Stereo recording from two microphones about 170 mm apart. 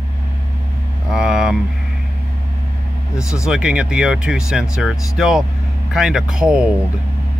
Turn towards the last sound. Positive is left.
turn(degrees=-5)  # may be behind; listen again after turning